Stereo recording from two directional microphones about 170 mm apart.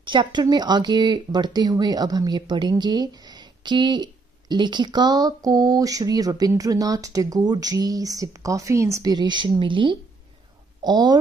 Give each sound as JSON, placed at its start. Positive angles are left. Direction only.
{"t": 0.0, "sound": "speech", "side_deg": -30}